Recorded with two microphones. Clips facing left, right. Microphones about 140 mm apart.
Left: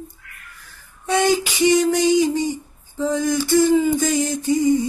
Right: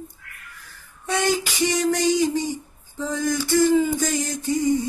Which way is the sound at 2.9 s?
20° left (ahead or behind).